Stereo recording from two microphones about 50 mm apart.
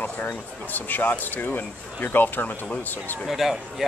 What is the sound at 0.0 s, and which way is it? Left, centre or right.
Speech, left.